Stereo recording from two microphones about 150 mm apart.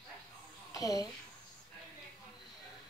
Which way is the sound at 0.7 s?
25° left (ahead or behind).